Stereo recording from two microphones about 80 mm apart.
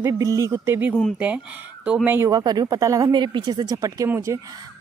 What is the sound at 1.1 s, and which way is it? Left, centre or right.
Speech, centre.